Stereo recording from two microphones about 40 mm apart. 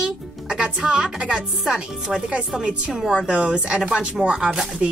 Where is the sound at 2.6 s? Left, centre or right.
Right.